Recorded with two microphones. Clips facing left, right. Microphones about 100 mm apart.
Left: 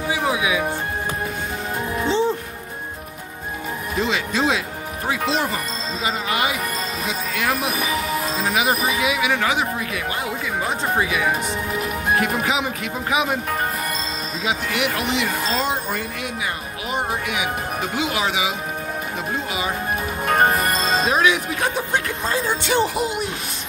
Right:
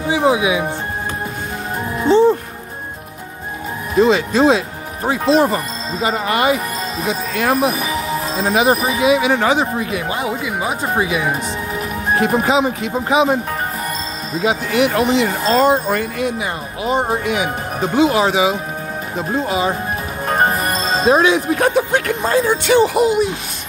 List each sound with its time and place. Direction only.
0.1 s speech: 30° right (ahead or behind)
2.0 s music: 50° right (ahead or behind)
3.9 s speech: 40° right (ahead or behind)
10.2 s speech: 15° right (ahead or behind)
11.8 s speech: 35° right (ahead or behind)
14.4 s speech: 40° right (ahead or behind)
15.5 s speech: 45° right (ahead or behind)
16.8 s speech: 30° right (ahead or behind)
20.6 s music: 30° right (ahead or behind)
21.7 s speech: 70° right (ahead or behind)